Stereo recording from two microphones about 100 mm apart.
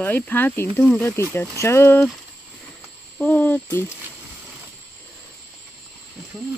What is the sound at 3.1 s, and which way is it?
Speech, 15° left (ahead or behind).